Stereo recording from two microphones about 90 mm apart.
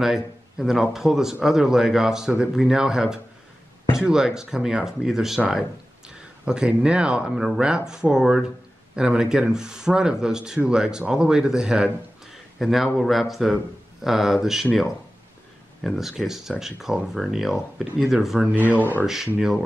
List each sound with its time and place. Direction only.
0.0 s a man's voice: 5° right (ahead or behind)
15.8 s a man's voice: centre (ahead or behind)
18.5 s speech: 20° right (ahead or behind)
19.3 s a man's voice: 5° right (ahead or behind)